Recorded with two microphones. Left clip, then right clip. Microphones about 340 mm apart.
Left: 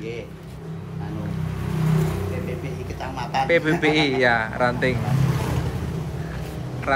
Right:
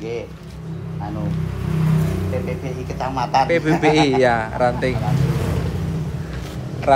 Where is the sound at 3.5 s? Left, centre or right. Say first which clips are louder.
Right 2 dB; centre.